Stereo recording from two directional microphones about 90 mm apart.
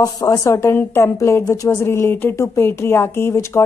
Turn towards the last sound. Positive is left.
turn(degrees=30)  # may be behind; listen again after turning